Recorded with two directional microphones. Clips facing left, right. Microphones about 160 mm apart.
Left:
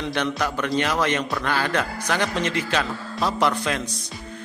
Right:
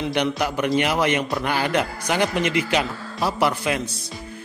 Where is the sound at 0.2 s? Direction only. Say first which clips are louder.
Right 2 dB; 15° right (ahead or behind).